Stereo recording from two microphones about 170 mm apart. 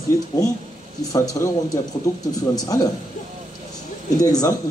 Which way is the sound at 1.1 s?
20° left (ahead or behind).